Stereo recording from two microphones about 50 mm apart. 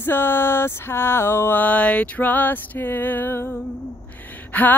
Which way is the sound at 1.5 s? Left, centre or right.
Left.